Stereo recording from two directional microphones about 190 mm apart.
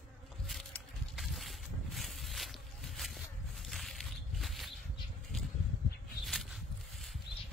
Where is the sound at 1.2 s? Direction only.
Centre (ahead or behind).